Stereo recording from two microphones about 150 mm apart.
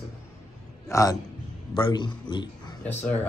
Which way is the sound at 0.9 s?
20° left (ahead or behind).